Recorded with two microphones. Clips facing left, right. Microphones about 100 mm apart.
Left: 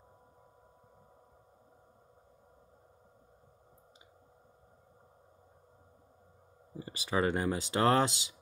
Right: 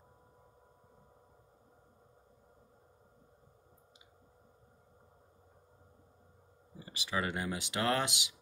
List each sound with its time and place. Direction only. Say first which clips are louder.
6.8 s speech: left 5 dB; 35° left (ahead or behind)